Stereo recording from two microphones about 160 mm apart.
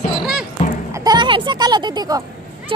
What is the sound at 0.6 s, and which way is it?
Music, 45° left (ahead or behind).